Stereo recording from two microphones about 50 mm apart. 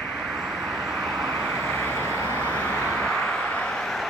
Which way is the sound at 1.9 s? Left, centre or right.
Left.